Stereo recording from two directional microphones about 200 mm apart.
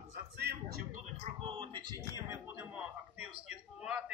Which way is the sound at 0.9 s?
35° right (ahead or behind).